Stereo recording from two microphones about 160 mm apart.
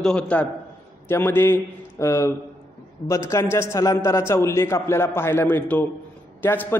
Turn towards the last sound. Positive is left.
turn(degrees=15)  # may be behind; listen again after turning